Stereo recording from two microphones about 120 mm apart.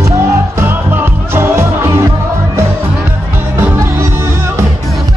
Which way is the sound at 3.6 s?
20° right (ahead or behind).